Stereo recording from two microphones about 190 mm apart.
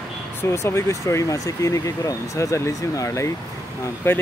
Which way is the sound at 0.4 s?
15° left (ahead or behind).